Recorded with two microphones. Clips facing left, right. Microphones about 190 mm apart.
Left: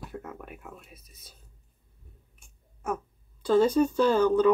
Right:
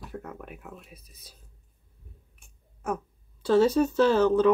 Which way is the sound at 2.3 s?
Centre (ahead or behind).